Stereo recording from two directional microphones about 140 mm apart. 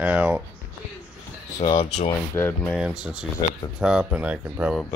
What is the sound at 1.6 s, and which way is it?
Speech, 40° left (ahead or behind).